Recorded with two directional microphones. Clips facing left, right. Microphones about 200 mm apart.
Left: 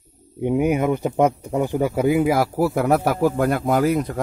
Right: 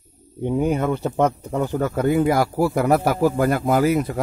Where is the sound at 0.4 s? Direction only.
15° left (ahead or behind).